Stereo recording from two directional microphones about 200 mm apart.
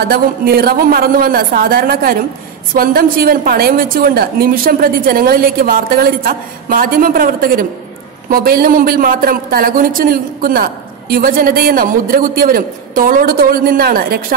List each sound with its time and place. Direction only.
0.1 s a woman's voice: 50° right (ahead or behind)